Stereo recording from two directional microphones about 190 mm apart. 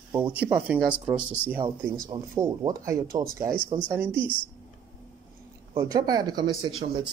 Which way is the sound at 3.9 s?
10° right (ahead or behind).